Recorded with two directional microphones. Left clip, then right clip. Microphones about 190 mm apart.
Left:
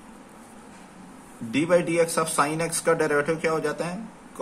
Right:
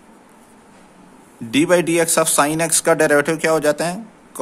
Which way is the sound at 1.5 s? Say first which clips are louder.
Right 6 dB; 60° right (ahead or behind).